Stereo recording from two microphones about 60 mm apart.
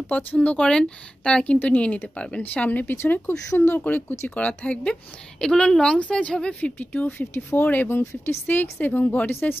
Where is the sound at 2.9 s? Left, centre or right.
Left.